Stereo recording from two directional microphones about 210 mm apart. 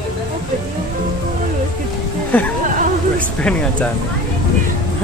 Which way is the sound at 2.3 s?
10° left (ahead or behind).